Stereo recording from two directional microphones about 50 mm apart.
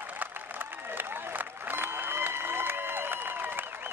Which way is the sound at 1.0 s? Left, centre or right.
Right.